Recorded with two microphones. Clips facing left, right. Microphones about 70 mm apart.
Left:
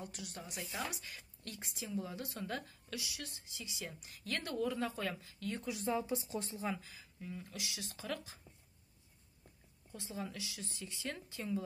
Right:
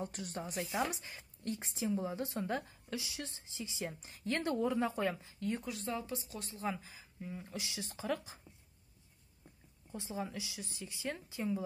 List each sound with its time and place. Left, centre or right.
0.0 s a woman's voice: right
5.7 s a woman's voice: centre; by 6.6 s left
6.8 s a woman's voice: right
9.9 s a woman's voice: centre